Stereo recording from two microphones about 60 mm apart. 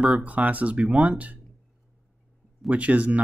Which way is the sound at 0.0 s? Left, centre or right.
Right.